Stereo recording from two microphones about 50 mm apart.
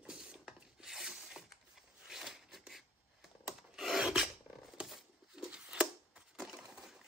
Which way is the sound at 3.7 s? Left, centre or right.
Centre.